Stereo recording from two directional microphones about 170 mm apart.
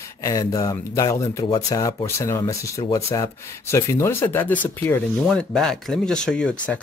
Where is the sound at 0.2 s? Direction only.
20° left (ahead or behind).